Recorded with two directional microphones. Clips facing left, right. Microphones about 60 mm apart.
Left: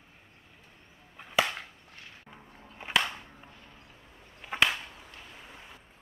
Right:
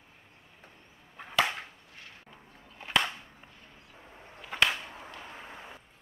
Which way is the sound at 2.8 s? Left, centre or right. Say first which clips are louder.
Left 2 dB; centre.